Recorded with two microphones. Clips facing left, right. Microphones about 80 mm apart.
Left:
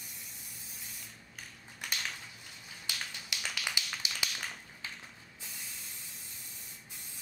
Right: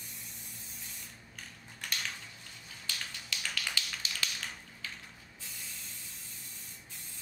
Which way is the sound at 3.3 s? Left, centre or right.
Centre.